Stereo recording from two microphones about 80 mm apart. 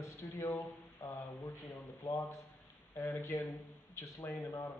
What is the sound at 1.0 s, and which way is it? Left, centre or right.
Speech, left.